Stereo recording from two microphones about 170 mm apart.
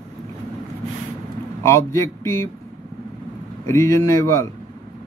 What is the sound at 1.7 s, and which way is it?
Speech, 15° left (ahead or behind).